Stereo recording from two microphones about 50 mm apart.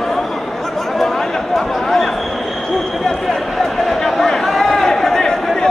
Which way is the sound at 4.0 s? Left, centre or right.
Centre.